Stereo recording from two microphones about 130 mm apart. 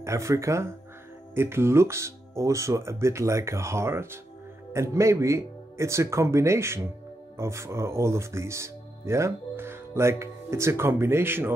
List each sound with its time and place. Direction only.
0.0 s speech: 20° right (ahead or behind)